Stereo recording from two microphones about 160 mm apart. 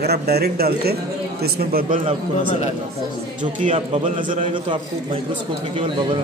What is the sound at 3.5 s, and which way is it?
Speech, 45° right (ahead or behind).